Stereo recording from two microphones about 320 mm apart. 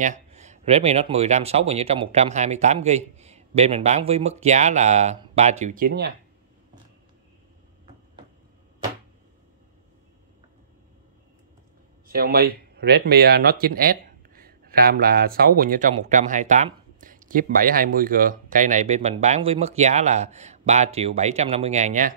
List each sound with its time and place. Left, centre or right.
0.0 s speech: right
12.1 s speech: right